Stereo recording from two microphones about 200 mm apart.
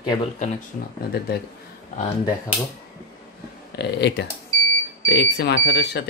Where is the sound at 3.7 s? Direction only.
55° left (ahead or behind).